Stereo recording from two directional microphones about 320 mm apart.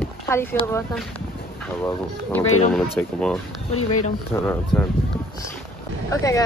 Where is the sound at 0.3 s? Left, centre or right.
Centre.